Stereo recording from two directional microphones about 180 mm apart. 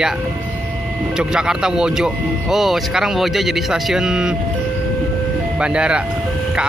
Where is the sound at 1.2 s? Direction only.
5° right (ahead or behind).